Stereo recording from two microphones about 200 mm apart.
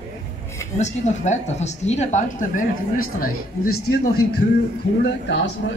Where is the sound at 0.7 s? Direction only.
35° left (ahead or behind).